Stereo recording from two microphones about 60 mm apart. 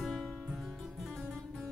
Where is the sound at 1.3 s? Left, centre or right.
Centre.